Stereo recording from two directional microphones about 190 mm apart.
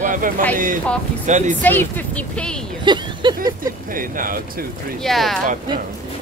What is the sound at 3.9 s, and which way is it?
Speech, 45° right (ahead or behind).